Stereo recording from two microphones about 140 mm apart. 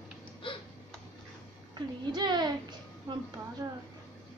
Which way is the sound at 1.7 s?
30° right (ahead or behind).